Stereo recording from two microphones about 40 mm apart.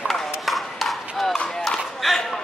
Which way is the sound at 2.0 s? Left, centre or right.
Centre.